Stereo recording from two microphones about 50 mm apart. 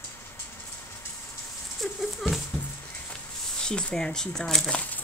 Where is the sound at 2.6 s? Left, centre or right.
Left.